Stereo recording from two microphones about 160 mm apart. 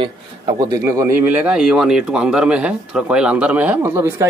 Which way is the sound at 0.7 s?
15° right (ahead or behind).